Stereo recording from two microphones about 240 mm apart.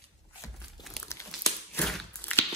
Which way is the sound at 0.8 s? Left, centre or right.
Centre.